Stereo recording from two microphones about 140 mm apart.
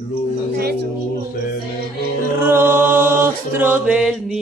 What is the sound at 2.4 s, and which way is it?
Chant, 15° right (ahead or behind).